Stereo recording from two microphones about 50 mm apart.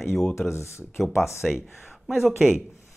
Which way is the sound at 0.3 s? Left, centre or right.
Left.